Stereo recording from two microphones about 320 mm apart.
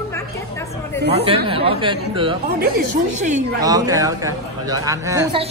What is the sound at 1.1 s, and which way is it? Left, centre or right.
A man's voice, centre.